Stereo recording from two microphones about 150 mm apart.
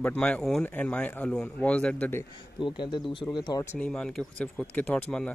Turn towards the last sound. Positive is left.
turn(degrees=10)  # may be behind; listen again after turning